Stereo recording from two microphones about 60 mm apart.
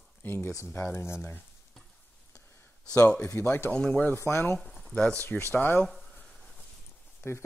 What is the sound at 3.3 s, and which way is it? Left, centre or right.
Speech, left.